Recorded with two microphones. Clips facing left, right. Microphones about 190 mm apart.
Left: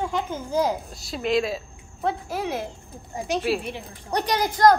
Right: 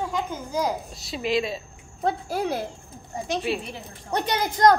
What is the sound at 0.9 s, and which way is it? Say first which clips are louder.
Speech: left 2 dB; centre (ahead or behind).